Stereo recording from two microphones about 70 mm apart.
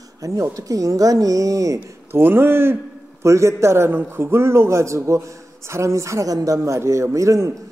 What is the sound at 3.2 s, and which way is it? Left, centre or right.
A man's voice, right.